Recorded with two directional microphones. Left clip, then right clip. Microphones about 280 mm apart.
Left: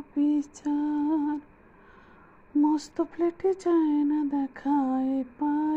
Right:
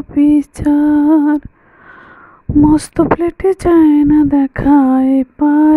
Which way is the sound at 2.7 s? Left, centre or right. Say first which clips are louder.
Right 17 dB; right.